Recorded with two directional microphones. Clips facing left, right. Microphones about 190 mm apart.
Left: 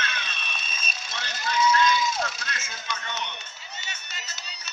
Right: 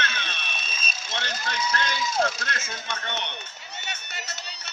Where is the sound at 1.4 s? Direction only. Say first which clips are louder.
Left 8 dB; 70° right (ahead or behind).